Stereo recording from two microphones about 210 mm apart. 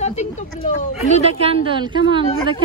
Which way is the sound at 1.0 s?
30° right (ahead or behind).